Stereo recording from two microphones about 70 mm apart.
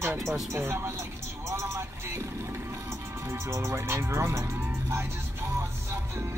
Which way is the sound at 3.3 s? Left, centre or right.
Right.